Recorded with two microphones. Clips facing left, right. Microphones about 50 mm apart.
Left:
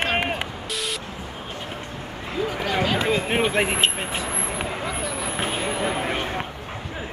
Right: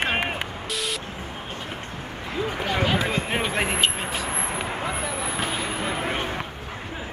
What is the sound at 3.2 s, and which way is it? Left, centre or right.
Speech, left.